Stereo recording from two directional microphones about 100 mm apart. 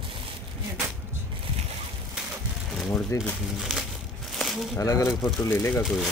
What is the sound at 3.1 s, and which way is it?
Speech, 30° left (ahead or behind).